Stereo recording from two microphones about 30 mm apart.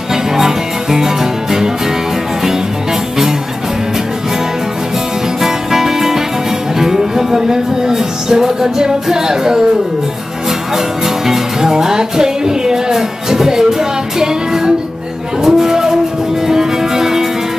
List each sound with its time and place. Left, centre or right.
0.1 s music: centre
5.4 s music: centre
11.2 s music: centre